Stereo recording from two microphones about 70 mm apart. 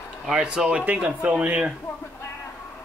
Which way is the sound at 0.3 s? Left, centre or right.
Centre.